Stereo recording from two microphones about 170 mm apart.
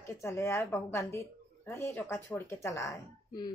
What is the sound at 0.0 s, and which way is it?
A woman's voice, 15° left (ahead or behind).